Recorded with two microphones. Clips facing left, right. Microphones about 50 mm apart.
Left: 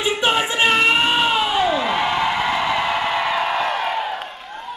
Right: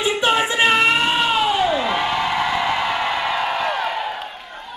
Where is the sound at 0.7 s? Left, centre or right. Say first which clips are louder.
Even; centre.